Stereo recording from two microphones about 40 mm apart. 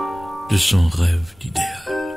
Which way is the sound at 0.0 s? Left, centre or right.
Centre.